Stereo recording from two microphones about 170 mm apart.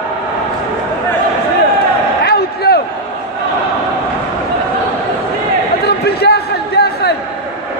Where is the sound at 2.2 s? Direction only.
70° left (ahead or behind).